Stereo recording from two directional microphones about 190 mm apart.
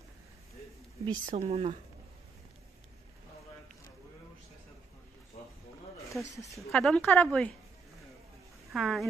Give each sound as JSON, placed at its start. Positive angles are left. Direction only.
{"t": 1.1, "sound": "speech", "side_deg": -40}
{"t": 6.7, "sound": "a woman's voice", "side_deg": 5}
{"t": 8.7, "sound": "a woman's voice", "side_deg": 0}